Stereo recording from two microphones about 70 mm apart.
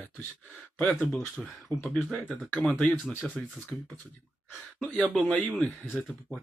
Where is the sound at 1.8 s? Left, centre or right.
Centre.